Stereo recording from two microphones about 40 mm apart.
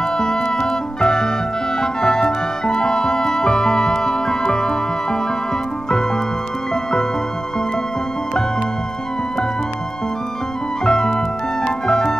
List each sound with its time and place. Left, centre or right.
0.0 s music: centre
6.7 s music: centre
10.8 s music: centre